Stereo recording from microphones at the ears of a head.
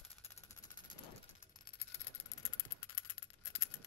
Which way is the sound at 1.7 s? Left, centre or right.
Left.